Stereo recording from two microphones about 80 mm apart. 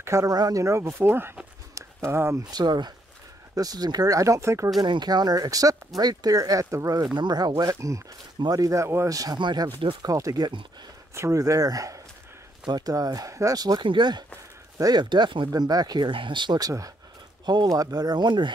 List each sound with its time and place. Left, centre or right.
0.0 s speech: right
0.9 s speech: right
2.5 s speech: right
4.7 s speech: right
7.2 s speech: right
9.4 s speech: right
10.0 s speech: right
11.1 s speech: right
13.6 s speech: right
14.8 s speech: right
16.5 s speech: right